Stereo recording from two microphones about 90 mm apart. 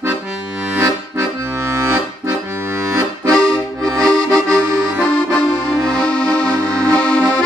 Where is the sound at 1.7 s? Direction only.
30° right (ahead or behind).